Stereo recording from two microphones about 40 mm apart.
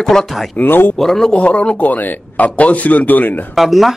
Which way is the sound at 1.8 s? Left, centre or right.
Left.